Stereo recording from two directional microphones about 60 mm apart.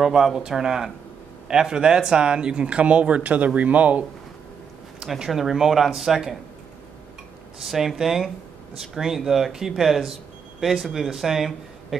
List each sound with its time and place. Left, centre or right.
0.0 s speech: centre; by 4.0 s right
5.0 s speech: centre
7.6 s speech: centre